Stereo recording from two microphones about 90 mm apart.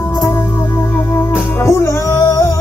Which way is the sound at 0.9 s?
25° left (ahead or behind).